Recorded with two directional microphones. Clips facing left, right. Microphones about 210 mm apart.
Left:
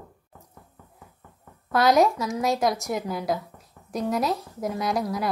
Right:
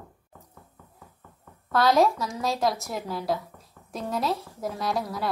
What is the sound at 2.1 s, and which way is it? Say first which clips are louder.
Speech: left 4 dB; 5° left (ahead or behind).